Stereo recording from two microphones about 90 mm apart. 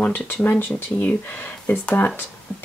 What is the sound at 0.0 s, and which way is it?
Speech, 20° left (ahead or behind).